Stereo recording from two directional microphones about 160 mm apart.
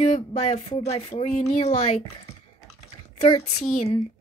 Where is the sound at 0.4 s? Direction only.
40° left (ahead or behind).